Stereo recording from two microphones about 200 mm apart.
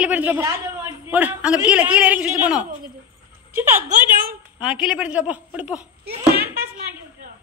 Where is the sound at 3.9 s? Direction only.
40° right (ahead or behind).